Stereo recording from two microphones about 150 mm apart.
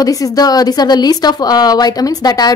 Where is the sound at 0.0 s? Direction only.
25° left (ahead or behind).